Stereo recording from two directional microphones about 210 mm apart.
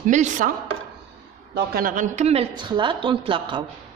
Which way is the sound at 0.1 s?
35° right (ahead or behind).